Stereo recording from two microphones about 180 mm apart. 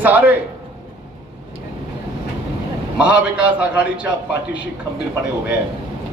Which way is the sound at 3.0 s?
5° right (ahead or behind).